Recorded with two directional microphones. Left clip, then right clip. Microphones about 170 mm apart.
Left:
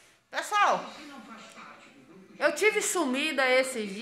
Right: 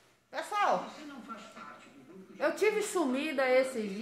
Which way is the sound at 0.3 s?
15° left (ahead or behind).